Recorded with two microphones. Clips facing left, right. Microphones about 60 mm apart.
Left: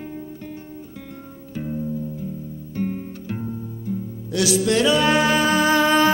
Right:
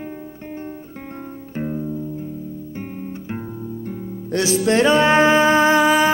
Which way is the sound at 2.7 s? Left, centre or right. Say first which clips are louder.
Left 10 dB; centre.